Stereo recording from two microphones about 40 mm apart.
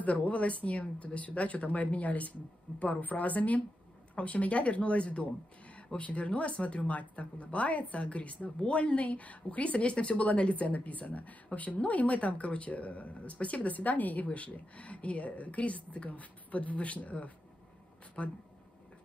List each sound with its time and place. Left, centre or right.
0.0 s speech: left